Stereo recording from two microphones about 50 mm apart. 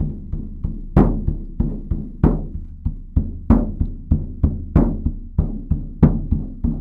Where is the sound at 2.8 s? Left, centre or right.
Right.